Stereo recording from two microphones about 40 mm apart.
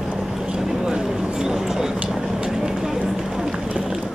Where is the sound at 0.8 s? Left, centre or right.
Centre.